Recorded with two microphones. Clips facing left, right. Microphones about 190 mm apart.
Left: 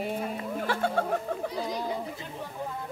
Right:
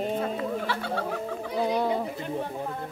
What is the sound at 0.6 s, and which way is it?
Speech, 50° left (ahead or behind).